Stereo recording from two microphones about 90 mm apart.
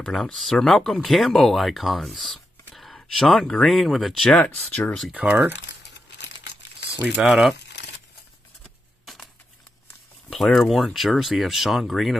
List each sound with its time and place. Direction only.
0.0 s speech: 5° left (ahead or behind)
4.3 s speech: 15° left (ahead or behind)
5.1 s speech: 15° right (ahead or behind)
7.2 s speech: 5° right (ahead or behind)
9.0 s a sound: centre (ahead or behind)
10.3 s speech: 5° left (ahead or behind)